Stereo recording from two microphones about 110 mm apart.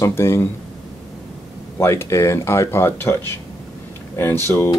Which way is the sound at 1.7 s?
25° left (ahead or behind).